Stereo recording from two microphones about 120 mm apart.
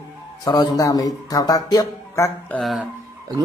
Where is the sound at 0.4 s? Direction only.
35° left (ahead or behind).